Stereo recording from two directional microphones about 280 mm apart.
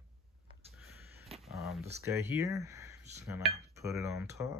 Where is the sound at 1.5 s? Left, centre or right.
Centre.